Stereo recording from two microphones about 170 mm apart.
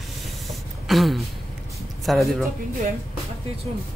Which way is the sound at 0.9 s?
Centre (ahead or behind).